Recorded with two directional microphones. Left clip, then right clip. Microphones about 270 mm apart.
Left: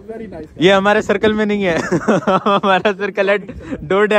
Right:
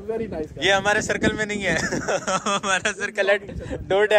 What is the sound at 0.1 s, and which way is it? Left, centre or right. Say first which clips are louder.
Speech: right 2 dB; right.